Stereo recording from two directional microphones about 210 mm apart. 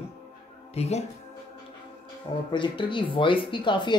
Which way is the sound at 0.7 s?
30° left (ahead or behind).